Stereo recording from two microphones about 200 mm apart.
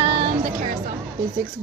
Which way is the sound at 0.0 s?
35° right (ahead or behind).